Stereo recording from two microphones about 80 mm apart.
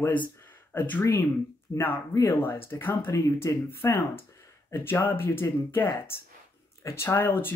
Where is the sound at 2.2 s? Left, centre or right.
Left.